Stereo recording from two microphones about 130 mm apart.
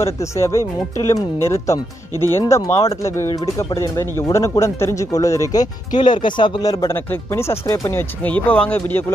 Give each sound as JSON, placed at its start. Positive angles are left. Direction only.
{"t": 0.0, "sound": "speech", "side_deg": 25}